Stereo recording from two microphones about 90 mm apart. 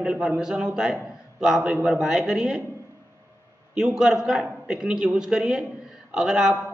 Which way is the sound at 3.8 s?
5° right (ahead or behind).